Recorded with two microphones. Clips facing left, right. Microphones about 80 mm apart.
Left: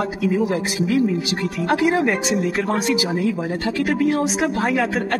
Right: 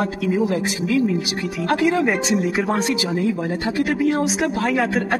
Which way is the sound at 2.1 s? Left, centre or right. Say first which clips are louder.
Right 1 dB; centre.